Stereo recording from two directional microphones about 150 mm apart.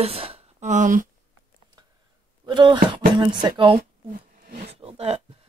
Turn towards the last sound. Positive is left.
turn(degrees=-40)  # may be behind; listen again after turning